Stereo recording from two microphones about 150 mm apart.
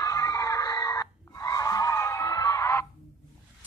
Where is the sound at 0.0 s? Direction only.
20° left (ahead or behind).